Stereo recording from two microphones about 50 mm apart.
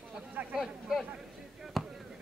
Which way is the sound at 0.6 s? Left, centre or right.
Centre.